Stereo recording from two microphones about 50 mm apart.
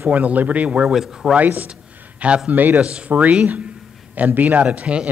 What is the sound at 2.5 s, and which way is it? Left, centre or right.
Speech, right.